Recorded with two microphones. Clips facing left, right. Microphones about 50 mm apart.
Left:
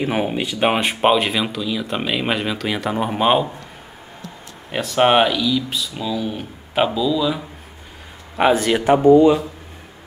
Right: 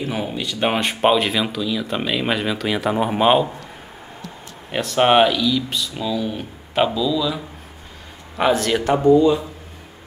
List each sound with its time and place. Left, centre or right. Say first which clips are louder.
0.1 s speech: left 4 dB; left
0.5 s speech: right 1 dB; centre
4.6 s speech: even; centre
8.4 s a man's voice: left 2 dB; centre
9.1 s speech: left 2 dB; left